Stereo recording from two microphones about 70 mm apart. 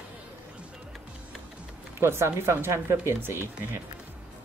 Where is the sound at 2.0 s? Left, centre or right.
Right.